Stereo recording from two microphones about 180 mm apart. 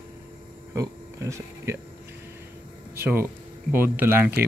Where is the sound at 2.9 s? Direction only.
10° right (ahead or behind).